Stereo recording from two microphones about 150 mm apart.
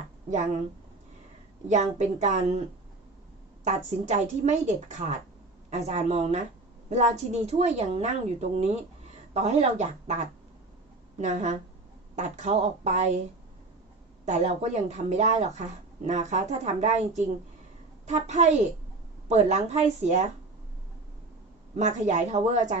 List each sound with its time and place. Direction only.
1.7 s speech: 50° right (ahead or behind)
3.6 s speech: 50° right (ahead or behind)
14.2 s speech: 50° right (ahead or behind)
21.7 s speech: 55° right (ahead or behind)